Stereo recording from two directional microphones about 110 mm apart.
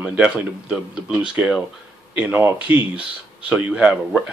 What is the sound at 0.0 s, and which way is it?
Speech, 10° right (ahead or behind).